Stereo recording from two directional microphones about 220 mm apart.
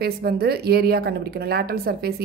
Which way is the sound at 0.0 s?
45° right (ahead or behind).